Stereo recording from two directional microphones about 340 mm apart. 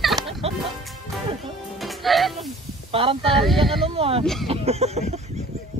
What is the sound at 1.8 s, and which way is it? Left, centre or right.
Music, centre.